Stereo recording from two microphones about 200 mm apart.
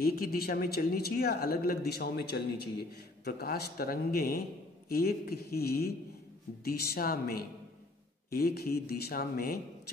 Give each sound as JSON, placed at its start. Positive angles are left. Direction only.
{"t": 0.0, "sound": "speech", "side_deg": 50}